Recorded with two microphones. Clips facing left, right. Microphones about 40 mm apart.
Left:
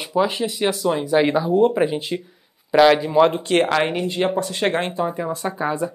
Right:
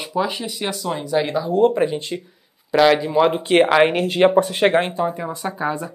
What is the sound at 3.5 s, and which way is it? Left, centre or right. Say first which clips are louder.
Speech: right 4 dB; centre.